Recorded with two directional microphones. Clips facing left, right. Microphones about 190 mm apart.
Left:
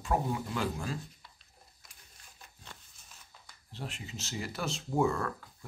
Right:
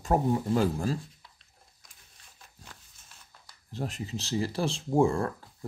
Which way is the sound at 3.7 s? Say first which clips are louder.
Right 8 dB; 40° right (ahead or behind).